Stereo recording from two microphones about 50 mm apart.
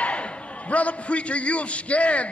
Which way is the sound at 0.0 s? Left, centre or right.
Left.